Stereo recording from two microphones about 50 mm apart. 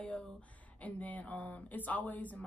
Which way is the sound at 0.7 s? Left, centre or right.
Left.